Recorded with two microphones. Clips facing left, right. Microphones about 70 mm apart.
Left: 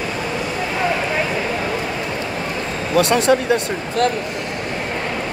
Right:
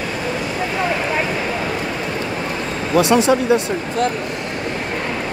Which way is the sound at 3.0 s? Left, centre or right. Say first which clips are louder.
Right 1 dB; left.